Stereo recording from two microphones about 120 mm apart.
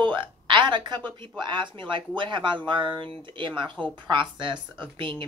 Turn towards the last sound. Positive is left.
turn(degrees=-45)  # may be behind; listen again after turning